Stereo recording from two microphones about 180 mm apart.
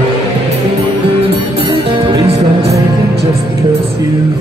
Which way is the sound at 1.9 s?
30° right (ahead or behind).